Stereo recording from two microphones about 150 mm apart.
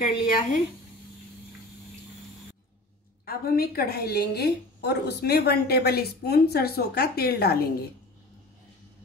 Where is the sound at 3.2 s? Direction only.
90° left.